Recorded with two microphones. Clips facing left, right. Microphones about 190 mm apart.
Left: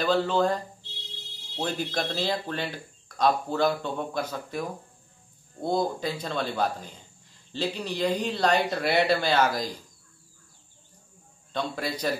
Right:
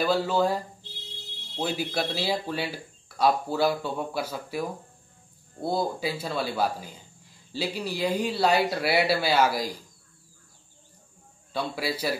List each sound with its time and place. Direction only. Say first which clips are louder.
0.0 s speech: even; 10° right (ahead or behind)
1.6 s speech: right 1 dB; 10° right (ahead or behind)
11.5 s speech: right 1 dB; 5° right (ahead or behind)